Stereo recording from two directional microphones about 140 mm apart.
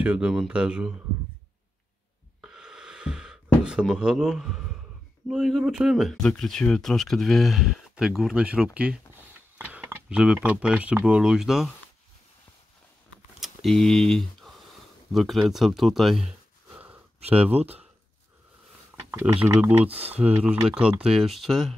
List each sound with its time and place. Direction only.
0.0 s speech: 10° right (ahead or behind)
2.4 s gasp: 5° right (ahead or behind)
5.3 s speech: centre (ahead or behind)
13.4 s speech: centre (ahead or behind)
17.2 s speech: 45° right (ahead or behind)
19.0 s speech: 15° right (ahead or behind); by 21.7 s centre (ahead or behind)